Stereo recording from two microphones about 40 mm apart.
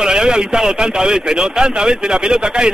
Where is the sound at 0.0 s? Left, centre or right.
Centre.